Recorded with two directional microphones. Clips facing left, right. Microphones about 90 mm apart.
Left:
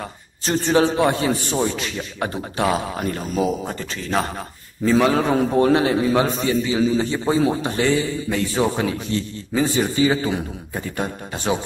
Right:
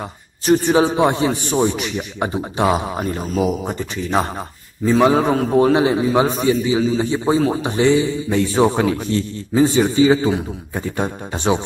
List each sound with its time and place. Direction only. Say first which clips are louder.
0.5 s a man's voice: right 3 dB; 15° right (ahead or behind)
5.3 s a man's voice: right 2 dB; centre (ahead or behind)
5.6 s a man's voice: right 3 dB; 15° right (ahead or behind)